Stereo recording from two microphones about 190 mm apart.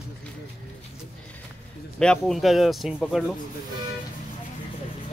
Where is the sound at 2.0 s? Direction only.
5° left (ahead or behind).